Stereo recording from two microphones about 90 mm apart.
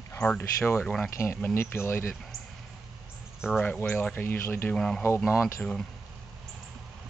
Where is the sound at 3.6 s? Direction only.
15° left (ahead or behind).